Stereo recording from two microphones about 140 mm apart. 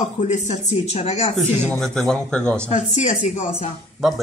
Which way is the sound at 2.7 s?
55° left (ahead or behind).